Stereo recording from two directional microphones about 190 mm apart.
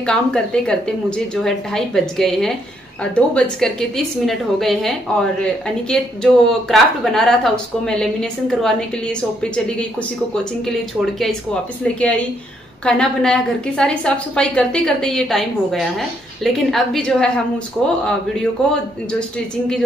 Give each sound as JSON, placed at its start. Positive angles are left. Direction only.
{"t": 0.0, "sound": "a woman's voice", "side_deg": 5}